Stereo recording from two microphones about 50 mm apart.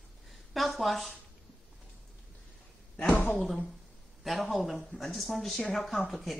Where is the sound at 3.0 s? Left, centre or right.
Left.